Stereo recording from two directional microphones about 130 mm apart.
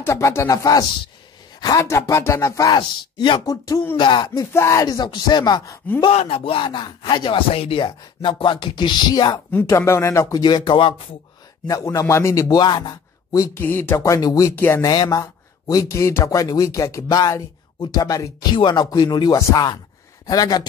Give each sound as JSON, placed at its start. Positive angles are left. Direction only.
{"t": 0.0, "sound": "a man's voice", "side_deg": 20}
{"t": 4.3, "sound": "a man's voice", "side_deg": 20}
{"t": 4.8, "sound": "speech", "side_deg": 35}
{"t": 6.1, "sound": "speech", "side_deg": 45}
{"t": 9.5, "sound": "a man's voice", "side_deg": 20}
{"t": 10.4, "sound": "speech", "side_deg": 35}
{"t": 11.6, "sound": "a man's voice", "side_deg": 25}
{"t": 14.9, "sound": "a man's voice", "side_deg": 30}